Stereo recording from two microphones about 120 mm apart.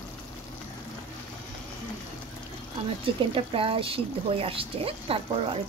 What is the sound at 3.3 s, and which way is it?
Speech, 50° right (ahead or behind).